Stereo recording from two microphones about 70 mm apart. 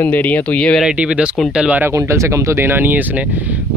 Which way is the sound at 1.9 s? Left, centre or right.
Right.